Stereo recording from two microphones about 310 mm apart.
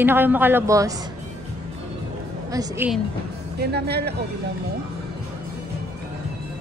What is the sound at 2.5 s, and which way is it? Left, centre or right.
Speech, centre.